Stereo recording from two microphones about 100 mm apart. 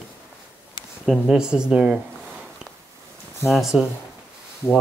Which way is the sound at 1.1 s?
5° right (ahead or behind).